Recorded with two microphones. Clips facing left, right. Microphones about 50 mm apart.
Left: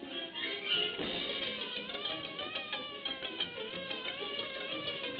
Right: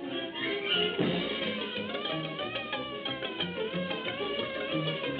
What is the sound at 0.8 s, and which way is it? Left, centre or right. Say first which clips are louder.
Music: right 8 dB; centre.